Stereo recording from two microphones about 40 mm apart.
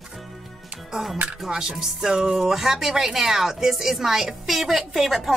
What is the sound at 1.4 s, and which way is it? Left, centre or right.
Speech, centre.